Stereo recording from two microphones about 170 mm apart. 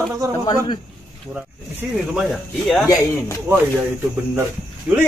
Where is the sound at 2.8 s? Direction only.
15° left (ahead or behind).